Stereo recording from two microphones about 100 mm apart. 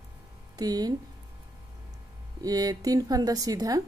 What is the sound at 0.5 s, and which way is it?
Speech, 40° right (ahead or behind).